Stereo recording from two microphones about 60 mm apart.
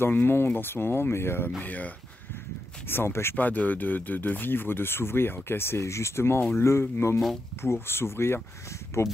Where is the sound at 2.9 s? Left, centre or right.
Left.